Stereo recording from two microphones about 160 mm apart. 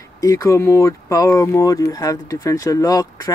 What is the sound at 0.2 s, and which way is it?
Speech, 20° left (ahead or behind).